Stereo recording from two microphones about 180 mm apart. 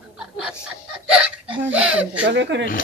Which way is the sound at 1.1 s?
5° right (ahead or behind).